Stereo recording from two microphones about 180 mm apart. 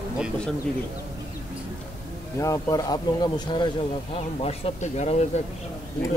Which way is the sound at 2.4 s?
20° left (ahead or behind).